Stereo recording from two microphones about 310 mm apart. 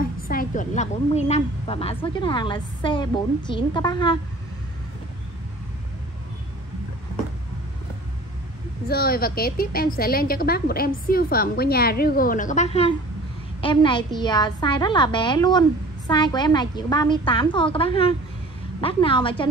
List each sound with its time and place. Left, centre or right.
0.0 s a woman's voice: left
8.8 s a woman's voice: left